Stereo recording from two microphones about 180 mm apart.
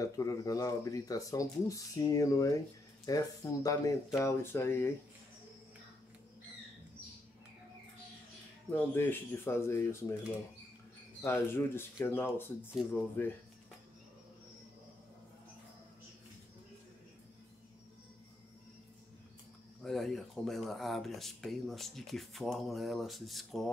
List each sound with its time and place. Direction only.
0.0 s speech: 20° left (ahead or behind)
8.6 s speech: 10° left (ahead or behind)
11.2 s speech: 15° left (ahead or behind)
19.8 s speech: centre (ahead or behind)